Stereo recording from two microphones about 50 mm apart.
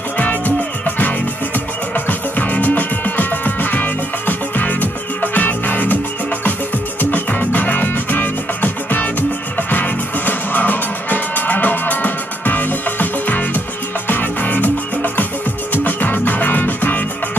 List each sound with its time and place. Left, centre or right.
0.8 s music: left
7.0 s music: left